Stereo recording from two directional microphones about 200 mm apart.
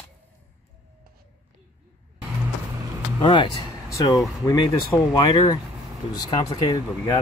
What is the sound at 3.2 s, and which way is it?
Speech, 25° left (ahead or behind).